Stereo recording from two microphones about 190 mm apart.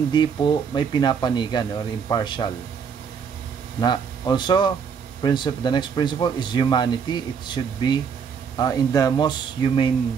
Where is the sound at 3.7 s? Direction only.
25° left (ahead or behind).